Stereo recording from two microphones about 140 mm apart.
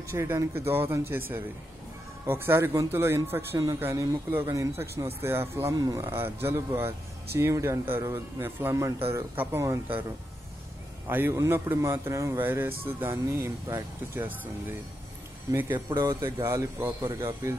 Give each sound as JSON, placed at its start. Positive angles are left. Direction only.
{"t": 0.1, "sound": "a man's voice", "side_deg": -20}
{"t": 11.1, "sound": "a man's voice", "side_deg": -15}
{"t": 15.5, "sound": "a man's voice", "side_deg": -15}